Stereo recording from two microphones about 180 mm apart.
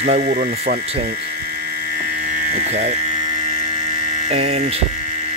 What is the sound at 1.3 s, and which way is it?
Electric toothbrush, 55° right (ahead or behind).